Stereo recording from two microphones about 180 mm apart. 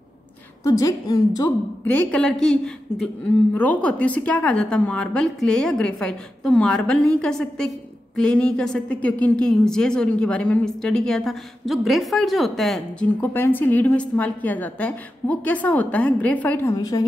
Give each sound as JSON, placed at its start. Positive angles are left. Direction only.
{"t": 0.7, "sound": "a woman's voice", "side_deg": 20}
{"t": 1.9, "sound": "a woman's voice", "side_deg": 10}